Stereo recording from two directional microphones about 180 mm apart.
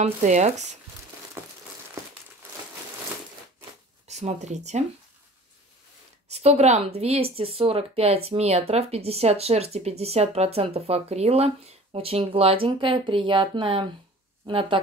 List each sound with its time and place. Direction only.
0.0 s speech: 40° right (ahead or behind)
1.4 s crumpling: 15° right (ahead or behind)
4.1 s speech: 40° right (ahead or behind)
6.3 s speech: 35° right (ahead or behind)